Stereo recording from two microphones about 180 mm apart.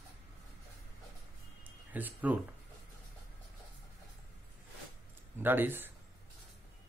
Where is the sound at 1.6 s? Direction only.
10° right (ahead or behind).